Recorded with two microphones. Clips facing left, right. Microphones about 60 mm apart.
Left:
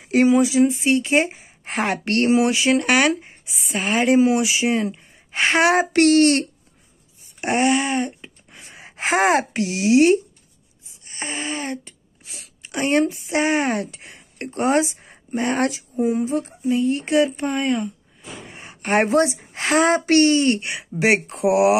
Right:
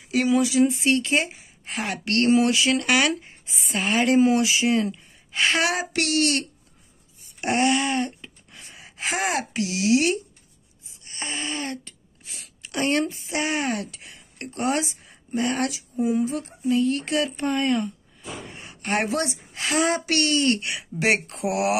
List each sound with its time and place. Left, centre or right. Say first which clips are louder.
0.0 s a sound: left 7 dB; left
0.3 s speech: left 3 dB; left
1.1 s a woman's voice: left 5 dB; left
2.2 s speech: left 2 dB; left
3.4 s a woman's voice: left 1 dB; centre
3.7 s speech: left 3 dB; left
7.3 s a sound: left 3 dB; left
8.7 s speech: left 8 dB; left
11.1 s a sound: left 3 dB; left
12.6 s speech: left 4 dB; left
17.4 s speech: left 1 dB; centre
18.5 s speech: left 6 dB; left